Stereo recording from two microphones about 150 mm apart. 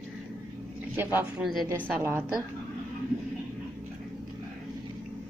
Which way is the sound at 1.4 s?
Centre (ahead or behind).